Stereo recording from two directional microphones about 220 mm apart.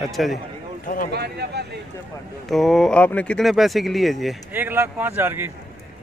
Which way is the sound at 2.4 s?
Centre (ahead or behind).